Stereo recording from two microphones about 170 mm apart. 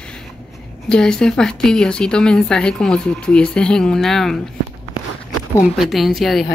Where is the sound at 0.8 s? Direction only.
5° left (ahead or behind).